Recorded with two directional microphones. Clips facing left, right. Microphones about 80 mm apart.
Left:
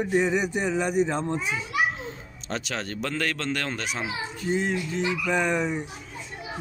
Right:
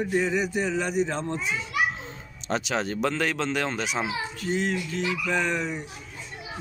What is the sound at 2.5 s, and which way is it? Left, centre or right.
Speech, centre.